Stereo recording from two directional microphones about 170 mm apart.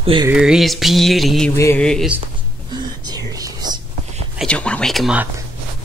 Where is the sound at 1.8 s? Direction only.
5° left (ahead or behind).